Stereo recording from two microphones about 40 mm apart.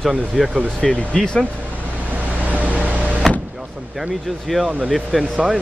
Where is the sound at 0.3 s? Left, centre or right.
Centre.